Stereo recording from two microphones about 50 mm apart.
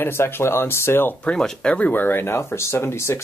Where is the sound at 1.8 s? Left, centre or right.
Left.